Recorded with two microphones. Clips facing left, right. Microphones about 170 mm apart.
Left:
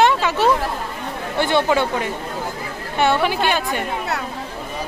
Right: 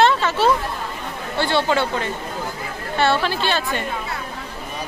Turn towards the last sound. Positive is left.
turn(degrees=15)  # may be behind; listen again after turning